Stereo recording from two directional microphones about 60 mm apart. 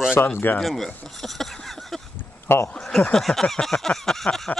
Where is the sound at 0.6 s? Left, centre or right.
Centre.